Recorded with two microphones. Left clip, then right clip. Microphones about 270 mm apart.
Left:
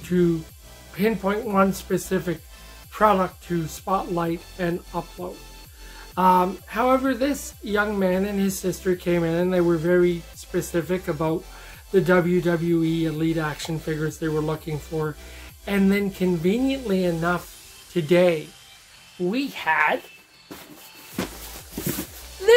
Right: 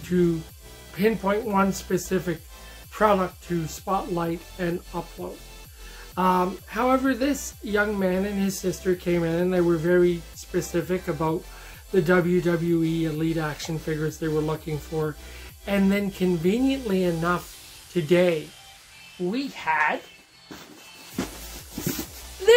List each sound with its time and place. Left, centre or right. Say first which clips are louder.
0.1 s speech: left 2 dB; centre
19.2 s speech: left 3 dB; centre